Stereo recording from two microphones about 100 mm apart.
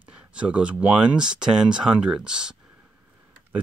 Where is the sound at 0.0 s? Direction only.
10° right (ahead or behind).